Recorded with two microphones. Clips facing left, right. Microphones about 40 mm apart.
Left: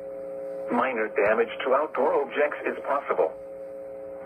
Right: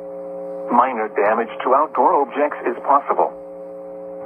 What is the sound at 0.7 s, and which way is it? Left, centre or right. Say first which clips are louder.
Speech: right 9 dB; centre.